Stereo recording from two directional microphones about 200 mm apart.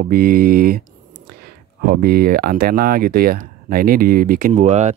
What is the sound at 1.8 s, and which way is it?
Speech, 50° right (ahead or behind).